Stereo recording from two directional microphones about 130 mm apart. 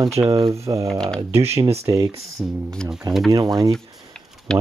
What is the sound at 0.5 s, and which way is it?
Speech, 25° right (ahead or behind).